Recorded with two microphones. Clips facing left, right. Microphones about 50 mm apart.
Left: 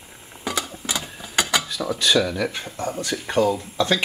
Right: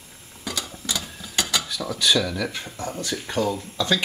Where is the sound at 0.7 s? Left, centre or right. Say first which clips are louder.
Left 2 dB; left.